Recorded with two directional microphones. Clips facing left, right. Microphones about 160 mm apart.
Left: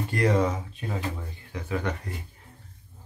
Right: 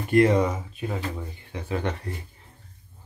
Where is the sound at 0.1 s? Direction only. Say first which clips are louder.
Right 5 dB; 20° right (ahead or behind).